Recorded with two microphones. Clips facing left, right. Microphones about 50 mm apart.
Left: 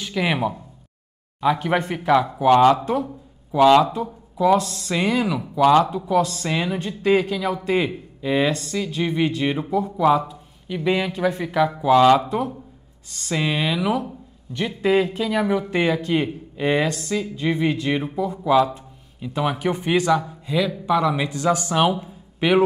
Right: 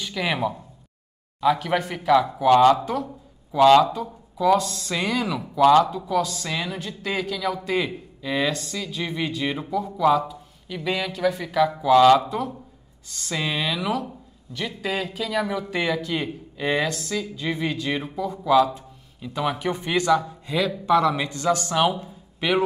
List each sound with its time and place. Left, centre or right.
0.0 s speech: centre
5.8 s speech: left
14.5 s speech: left
20.4 s speech: centre
22.0 s a sound: centre